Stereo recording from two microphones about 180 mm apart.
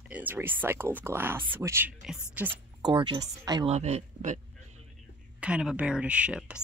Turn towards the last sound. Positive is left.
turn(degrees=-5)  # may be behind; listen again after turning